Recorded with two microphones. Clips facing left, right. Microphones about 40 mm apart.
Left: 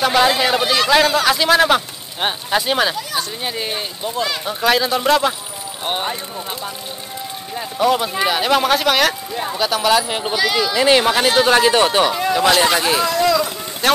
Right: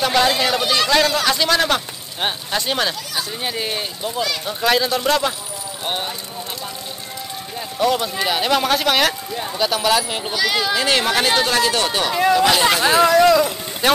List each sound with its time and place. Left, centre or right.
0.0 s speech: centre
7.5 s speech: centre
11.4 s speech: left
12.1 s speech: centre
13.0 s speech: right
13.8 s speech: centre